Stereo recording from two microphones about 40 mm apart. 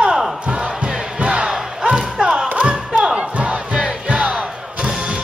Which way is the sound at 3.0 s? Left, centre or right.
Right.